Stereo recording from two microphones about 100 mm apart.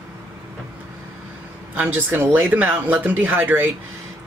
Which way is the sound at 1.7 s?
20° right (ahead or behind).